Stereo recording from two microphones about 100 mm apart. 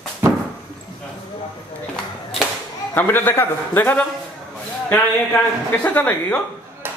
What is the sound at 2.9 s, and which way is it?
A man's voice, 20° left (ahead or behind).